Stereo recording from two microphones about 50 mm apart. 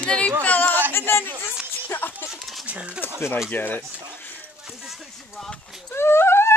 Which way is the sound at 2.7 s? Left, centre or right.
Right.